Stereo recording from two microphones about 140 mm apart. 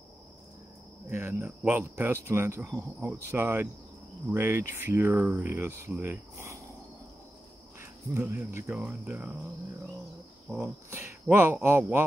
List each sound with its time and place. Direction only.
1.1 s speech: 15° right (ahead or behind)
7.8 s cricket: 20° right (ahead or behind)
8.5 s speech: 10° right (ahead or behind)
10.5 s speech: 10° right (ahead or behind)